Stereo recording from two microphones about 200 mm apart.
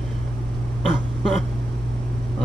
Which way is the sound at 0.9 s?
Centre (ahead or behind).